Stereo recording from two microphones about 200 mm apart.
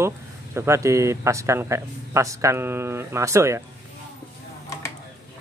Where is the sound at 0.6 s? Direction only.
15° right (ahead or behind).